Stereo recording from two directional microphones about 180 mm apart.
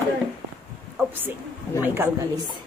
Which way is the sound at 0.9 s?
10° right (ahead or behind).